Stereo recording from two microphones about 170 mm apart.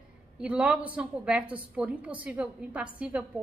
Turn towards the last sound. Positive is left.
turn(degrees=-5)  # may be behind; listen again after turning